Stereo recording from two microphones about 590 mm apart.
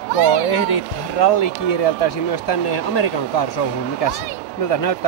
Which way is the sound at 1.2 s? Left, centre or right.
Left.